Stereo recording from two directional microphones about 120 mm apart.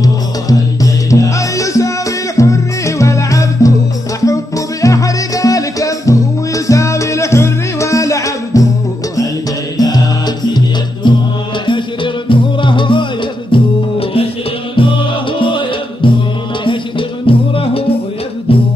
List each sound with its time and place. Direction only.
0.0 s music: 30° left (ahead or behind)
9.8 s music: 35° left (ahead or behind)
17.3 s music: 50° left (ahead or behind)